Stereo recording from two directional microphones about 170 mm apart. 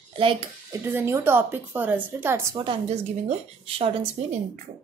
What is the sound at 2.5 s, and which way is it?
A woman's voice, 35° right (ahead or behind).